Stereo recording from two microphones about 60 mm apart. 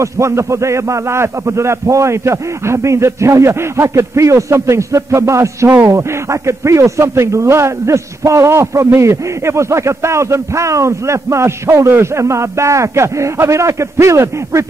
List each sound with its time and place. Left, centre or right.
0.0 s a man's voice: right